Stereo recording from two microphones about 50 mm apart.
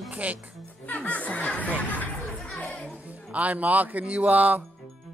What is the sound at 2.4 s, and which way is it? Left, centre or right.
Music, left.